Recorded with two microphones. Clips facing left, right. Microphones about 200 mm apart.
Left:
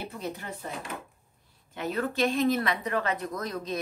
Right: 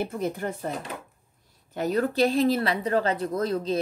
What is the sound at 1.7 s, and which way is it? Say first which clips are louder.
A woman's voice: right 6 dB; 40° right (ahead or behind).